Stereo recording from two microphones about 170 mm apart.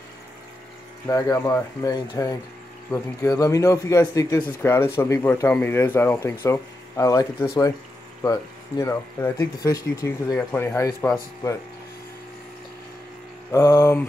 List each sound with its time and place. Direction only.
1.0 s a man's voice: 20° left (ahead or behind)
13.5 s speech: 15° left (ahead or behind)